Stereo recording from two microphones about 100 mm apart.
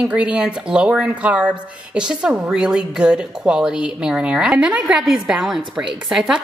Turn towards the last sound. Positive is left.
turn(degrees=-5)  # may be behind; listen again after turning